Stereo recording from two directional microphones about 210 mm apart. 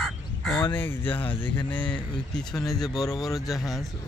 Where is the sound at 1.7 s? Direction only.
5° left (ahead or behind).